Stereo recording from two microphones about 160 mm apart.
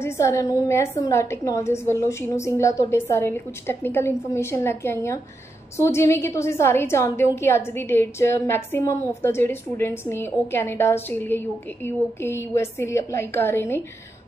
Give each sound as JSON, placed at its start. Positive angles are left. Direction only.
{"t": 0.0, "sound": "a woman's voice", "side_deg": 20}